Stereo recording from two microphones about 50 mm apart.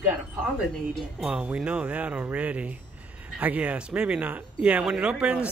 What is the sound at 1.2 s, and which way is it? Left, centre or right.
A man's voice, right.